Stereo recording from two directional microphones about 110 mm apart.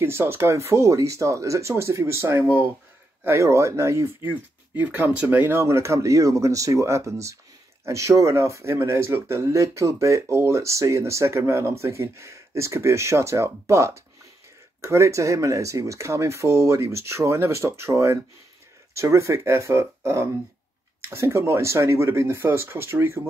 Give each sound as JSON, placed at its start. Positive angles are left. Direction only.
{"t": 0.0, "sound": "speech", "side_deg": -20}